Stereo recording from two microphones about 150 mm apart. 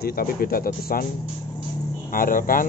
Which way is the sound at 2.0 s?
70° left (ahead or behind).